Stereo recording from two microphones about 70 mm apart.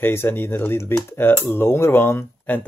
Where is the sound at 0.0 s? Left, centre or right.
Left.